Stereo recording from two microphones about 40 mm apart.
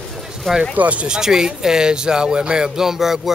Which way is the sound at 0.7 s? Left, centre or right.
Right.